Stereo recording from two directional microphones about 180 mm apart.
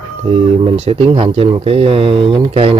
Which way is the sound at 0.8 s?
35° right (ahead or behind).